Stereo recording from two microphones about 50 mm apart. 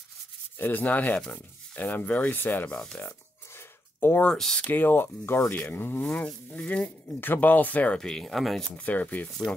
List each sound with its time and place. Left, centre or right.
0.6 s speech: left
3.0 s a sound: left
4.3 s speech: centre
4.6 s speech: left
5.5 s speech: left
6.1 s speech: left
7.2 s speech: left
7.9 s speech: centre
8.7 s speech: left